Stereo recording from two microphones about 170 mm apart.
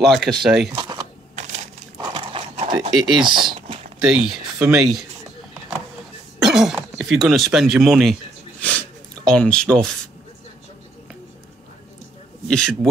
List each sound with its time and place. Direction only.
0.0 s speech: centre (ahead or behind)
0.7 s a sound: 25° right (ahead or behind)
1.3 s crushing: 45° right (ahead or behind)
2.0 s dog: 30° right (ahead or behind)
2.9 s speech: centre (ahead or behind)
3.2 s speech: 25° right (ahead or behind)
4.3 s speech: 5° right (ahead or behind)
6.4 s a sound: centre (ahead or behind)
12.4 s speech: 5° left (ahead or behind)